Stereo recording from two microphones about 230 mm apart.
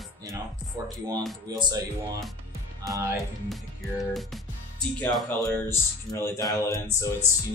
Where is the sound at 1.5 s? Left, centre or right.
Centre.